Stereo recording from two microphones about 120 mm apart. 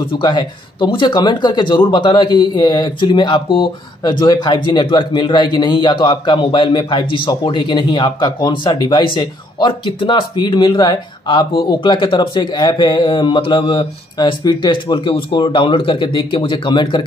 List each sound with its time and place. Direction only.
0.0 s speech: 45° left (ahead or behind)